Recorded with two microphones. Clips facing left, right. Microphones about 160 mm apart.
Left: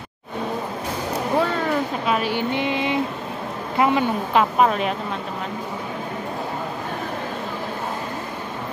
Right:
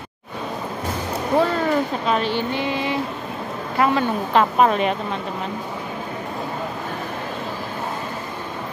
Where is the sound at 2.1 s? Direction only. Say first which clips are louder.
Right 1 dB; 10° left (ahead or behind).